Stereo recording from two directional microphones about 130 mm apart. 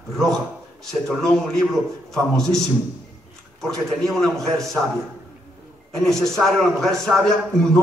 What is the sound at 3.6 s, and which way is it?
Speech, 5° left (ahead or behind).